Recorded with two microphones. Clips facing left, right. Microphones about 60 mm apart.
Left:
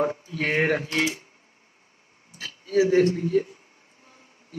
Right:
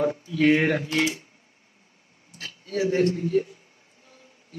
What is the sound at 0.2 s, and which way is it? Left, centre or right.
Speech, left.